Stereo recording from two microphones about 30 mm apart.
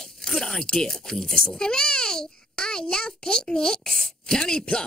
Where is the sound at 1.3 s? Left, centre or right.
Left.